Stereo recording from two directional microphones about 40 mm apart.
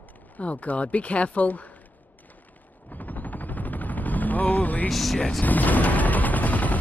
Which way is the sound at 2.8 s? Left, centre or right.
Left.